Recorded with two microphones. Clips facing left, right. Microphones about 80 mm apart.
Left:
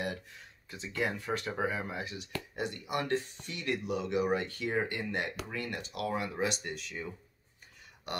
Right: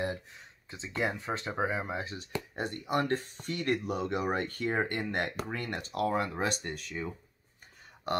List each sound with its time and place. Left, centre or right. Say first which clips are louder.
0.7 s speech: right 1 dB; right
8.1 s speech: right 7 dB; right